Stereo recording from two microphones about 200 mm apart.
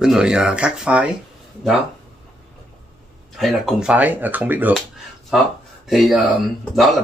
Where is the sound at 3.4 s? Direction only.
Centre (ahead or behind).